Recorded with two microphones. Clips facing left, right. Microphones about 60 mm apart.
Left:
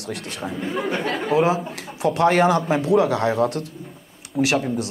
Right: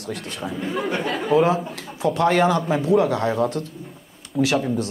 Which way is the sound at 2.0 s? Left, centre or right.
Left.